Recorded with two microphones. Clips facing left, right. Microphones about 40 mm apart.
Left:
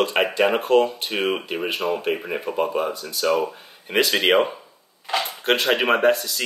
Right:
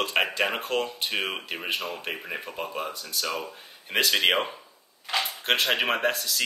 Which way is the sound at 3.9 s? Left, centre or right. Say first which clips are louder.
Left 5 dB; centre.